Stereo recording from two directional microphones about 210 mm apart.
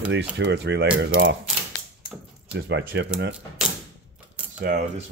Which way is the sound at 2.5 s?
60° right (ahead or behind).